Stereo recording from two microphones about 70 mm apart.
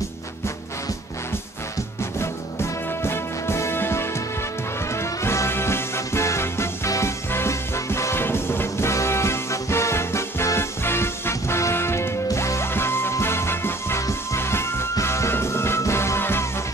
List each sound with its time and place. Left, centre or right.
2.1 s music: left